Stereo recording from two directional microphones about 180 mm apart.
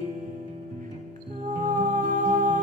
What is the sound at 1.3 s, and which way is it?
Music, 45° right (ahead or behind).